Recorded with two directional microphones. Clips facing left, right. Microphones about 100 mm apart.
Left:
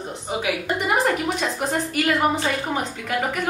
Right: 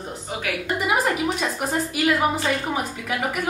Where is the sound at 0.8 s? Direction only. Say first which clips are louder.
Left 1 dB; 5° right (ahead or behind).